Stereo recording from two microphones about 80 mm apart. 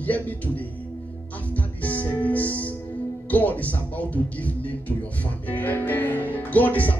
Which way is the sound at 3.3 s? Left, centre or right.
Centre.